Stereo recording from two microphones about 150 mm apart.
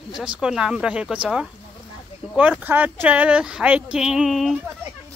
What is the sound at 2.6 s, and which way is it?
Speech, 10° right (ahead or behind).